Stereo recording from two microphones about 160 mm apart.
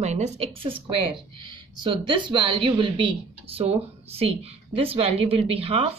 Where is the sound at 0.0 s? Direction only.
45° right (ahead or behind).